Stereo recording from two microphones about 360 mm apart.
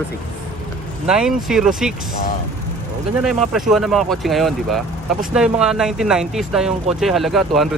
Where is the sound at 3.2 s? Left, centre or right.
Centre.